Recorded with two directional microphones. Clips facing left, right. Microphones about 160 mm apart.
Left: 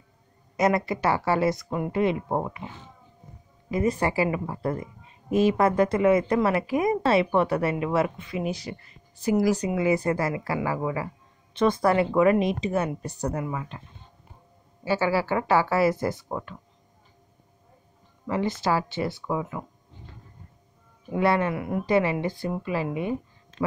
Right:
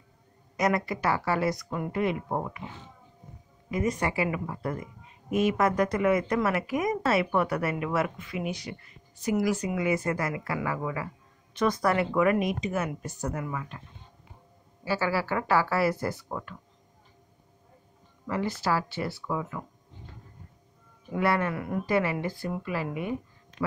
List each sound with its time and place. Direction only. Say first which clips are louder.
0.6 s speech: left 4 dB; 25° left (ahead or behind)
3.7 s speech: left 4 dB; 30° left (ahead or behind)
14.9 s speech: left 4 dB; 25° left (ahead or behind)
18.2 s speech: left 3 dB; 25° left (ahead or behind)
21.1 s speech: left 3 dB; 25° left (ahead or behind)